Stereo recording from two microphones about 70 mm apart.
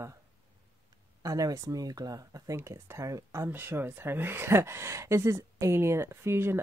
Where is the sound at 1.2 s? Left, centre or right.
Right.